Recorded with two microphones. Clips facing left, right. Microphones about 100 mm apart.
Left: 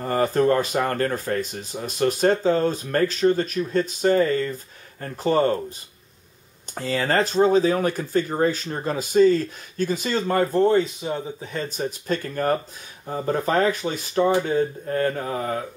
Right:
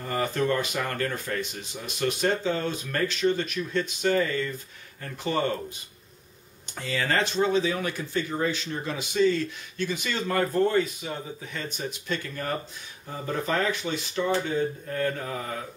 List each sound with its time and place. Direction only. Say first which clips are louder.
0.0 s speech: left 7 dB; 40° left (ahead or behind)
6.7 s speech: left 5 dB; 40° left (ahead or behind)